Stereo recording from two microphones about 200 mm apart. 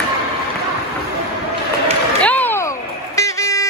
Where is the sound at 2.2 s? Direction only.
10° left (ahead or behind).